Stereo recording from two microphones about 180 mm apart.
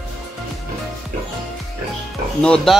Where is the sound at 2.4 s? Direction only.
5° left (ahead or behind).